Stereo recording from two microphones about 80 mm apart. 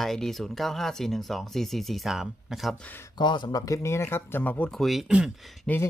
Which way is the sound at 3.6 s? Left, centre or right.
Left.